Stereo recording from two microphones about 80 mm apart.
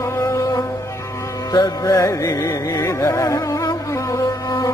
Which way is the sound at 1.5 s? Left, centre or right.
Left.